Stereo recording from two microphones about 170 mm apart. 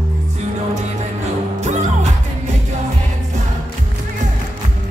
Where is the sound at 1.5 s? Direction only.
45° right (ahead or behind).